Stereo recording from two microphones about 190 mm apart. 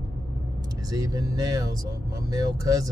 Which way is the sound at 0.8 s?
20° right (ahead or behind).